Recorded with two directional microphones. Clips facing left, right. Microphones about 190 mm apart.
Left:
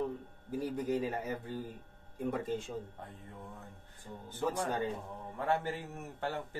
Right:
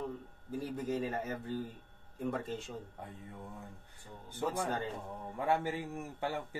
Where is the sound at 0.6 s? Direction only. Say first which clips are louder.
Left 2 dB; 15° left (ahead or behind).